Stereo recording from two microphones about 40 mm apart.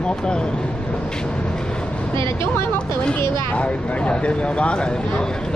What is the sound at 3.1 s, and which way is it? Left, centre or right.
Speech, left.